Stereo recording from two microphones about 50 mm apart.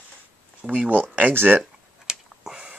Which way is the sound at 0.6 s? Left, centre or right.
Right.